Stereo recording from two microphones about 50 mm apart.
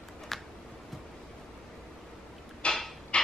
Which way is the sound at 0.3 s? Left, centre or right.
Centre.